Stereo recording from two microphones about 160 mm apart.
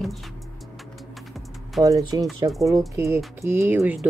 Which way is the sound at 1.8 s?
25° right (ahead or behind).